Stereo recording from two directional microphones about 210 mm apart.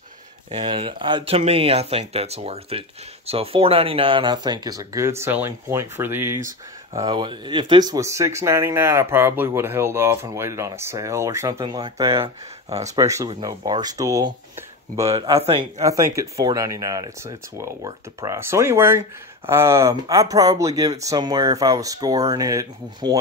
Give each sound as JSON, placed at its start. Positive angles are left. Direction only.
{"t": 0.5, "sound": "speech", "side_deg": -30}
{"t": 6.9, "sound": "speech", "side_deg": -20}
{"t": 13.0, "sound": "speech", "side_deg": -15}
{"t": 15.0, "sound": "speech", "side_deg": -30}
{"t": 15.8, "sound": "speech", "side_deg": -15}